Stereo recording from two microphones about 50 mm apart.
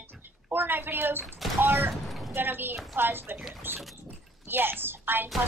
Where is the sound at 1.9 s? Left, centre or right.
Centre.